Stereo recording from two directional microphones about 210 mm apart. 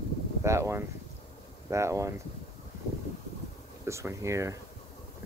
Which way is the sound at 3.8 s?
15° right (ahead or behind).